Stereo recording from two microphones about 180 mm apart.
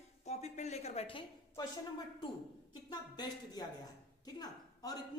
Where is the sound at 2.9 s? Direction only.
20° left (ahead or behind).